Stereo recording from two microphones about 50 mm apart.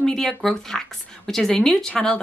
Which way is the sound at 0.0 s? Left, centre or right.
Centre.